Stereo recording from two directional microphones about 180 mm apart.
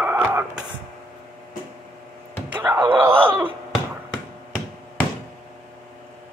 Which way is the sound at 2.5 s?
10° right (ahead or behind).